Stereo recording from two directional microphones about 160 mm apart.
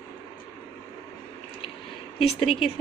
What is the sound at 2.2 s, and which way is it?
Speech, 40° left (ahead or behind).